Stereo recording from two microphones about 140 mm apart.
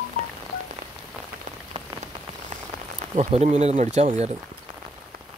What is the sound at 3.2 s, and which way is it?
Speech, 55° right (ahead or behind).